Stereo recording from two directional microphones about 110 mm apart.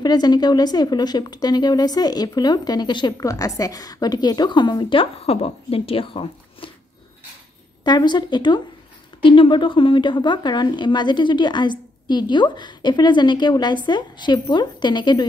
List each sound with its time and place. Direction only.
0.0 s a woman's voice: 40° left (ahead or behind)
3.2 s a woman's voice: 30° left (ahead or behind); by 6.7 s 55° left (ahead or behind)
7.8 s a woman's voice: 40° left (ahead or behind)